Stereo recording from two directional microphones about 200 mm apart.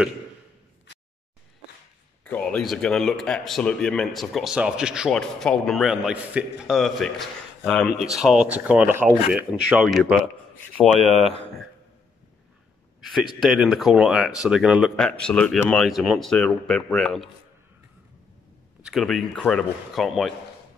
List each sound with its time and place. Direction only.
2.2 s speech: 5° left (ahead or behind)
11.1 s speech: 30° right (ahead or behind)
13.4 s speech: centre (ahead or behind)
18.8 s speech: centre (ahead or behind)